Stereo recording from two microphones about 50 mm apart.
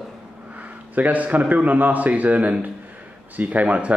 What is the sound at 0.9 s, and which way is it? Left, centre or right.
A man's voice, right.